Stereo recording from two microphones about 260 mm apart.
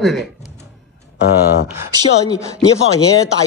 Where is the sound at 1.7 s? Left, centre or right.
Centre.